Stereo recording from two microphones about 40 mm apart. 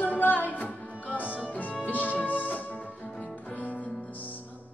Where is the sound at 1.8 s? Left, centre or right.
Left.